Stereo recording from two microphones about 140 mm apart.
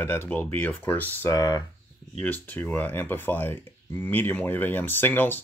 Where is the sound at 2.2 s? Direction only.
10° left (ahead or behind).